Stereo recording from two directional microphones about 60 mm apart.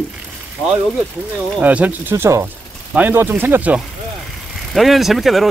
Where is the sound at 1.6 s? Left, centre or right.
Right.